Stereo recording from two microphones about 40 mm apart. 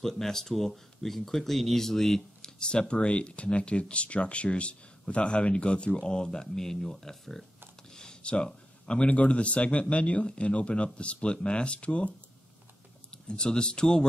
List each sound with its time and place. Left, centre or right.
0.0 s speech: centre
2.7 s speech: left
7.9 s a sound: centre
9.1 s speech: left
13.1 s speech: left